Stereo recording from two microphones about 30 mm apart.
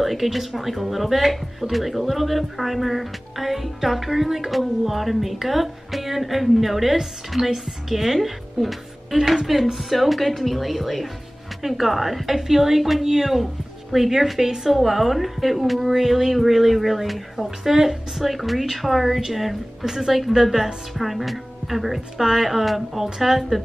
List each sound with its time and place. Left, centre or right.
0.0 s a woman's voice: centre
14.4 s a woman's voice: centre
14.7 s speech: centre
18.1 s a woman's voice: centre
22.1 s a woman's voice: centre
22.5 s a woman's voice: centre